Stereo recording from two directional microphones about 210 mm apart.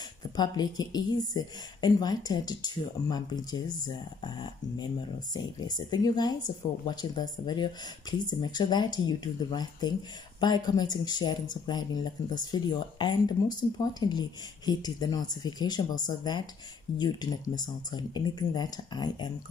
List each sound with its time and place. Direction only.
0.4 s speech: 20° left (ahead or behind)